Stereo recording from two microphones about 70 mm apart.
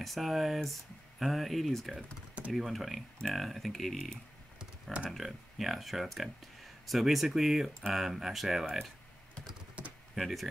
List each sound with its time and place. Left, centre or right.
0.0 s speech: centre
5.1 s speech: centre
9.8 s typing: centre
10.1 s speech: centre